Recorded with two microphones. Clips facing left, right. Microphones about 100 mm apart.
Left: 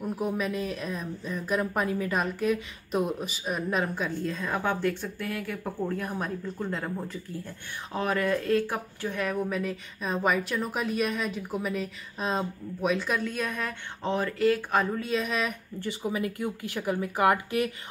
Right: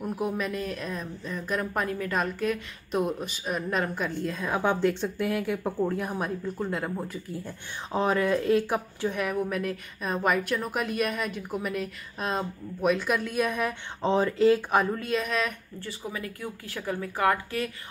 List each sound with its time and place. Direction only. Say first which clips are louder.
0.0 s speech: even; 5° right (ahead or behind)
4.6 s speech: right 4 dB; 20° right (ahead or behind)
7.9 s speech: right 3 dB; 20° right (ahead or behind)
15.0 s speech: right 1 dB; centre (ahead or behind)
15.8 s speech: left 6 dB; 20° left (ahead or behind)